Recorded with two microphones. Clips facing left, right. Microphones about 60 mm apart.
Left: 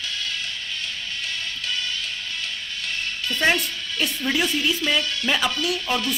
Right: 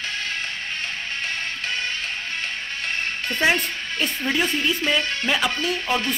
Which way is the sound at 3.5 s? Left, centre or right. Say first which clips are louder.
Right 1 dB; right.